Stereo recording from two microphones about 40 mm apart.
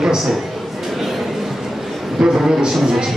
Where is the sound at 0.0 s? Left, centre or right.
Centre.